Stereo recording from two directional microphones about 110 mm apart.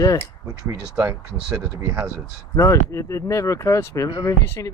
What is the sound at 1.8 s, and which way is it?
Speech, 15° right (ahead or behind).